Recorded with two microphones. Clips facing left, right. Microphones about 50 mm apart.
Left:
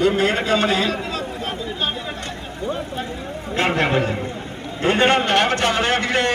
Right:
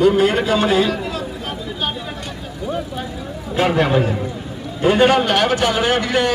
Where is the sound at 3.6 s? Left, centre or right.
Left.